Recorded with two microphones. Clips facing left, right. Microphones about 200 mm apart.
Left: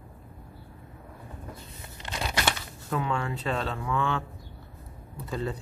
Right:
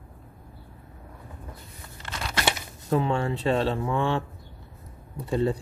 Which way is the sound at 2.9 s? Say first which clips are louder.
Right 5 dB; 30° right (ahead or behind).